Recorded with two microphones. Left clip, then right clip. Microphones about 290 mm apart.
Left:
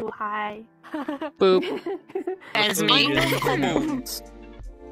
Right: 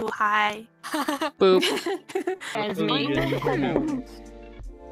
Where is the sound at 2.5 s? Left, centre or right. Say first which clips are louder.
Left 7 dB; left.